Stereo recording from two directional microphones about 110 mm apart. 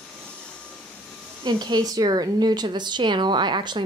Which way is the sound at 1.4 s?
40° right (ahead or behind).